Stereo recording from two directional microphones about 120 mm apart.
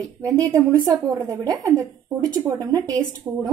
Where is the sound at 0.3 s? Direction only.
30° right (ahead or behind).